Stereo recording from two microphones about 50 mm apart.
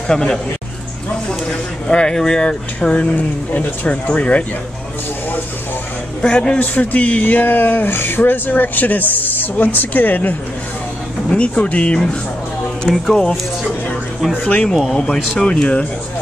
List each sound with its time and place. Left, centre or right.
0.1 s a man's voice: centre
1.5 s speech: centre
6.2 s speech: centre
6.6 s speech: left
11.2 s speech: left
12.9 s speech: centre
14.4 s speech: left